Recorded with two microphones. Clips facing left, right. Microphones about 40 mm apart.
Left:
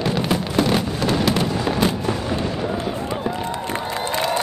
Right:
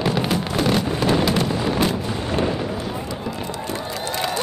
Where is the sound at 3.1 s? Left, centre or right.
Left.